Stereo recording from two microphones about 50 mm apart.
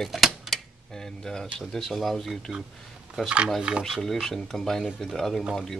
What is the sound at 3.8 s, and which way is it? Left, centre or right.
Speech, centre.